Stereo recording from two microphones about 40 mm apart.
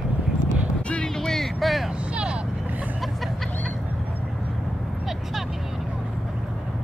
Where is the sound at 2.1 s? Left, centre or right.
Right.